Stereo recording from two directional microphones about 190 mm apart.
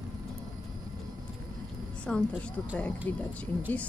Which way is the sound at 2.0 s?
5° left (ahead or behind).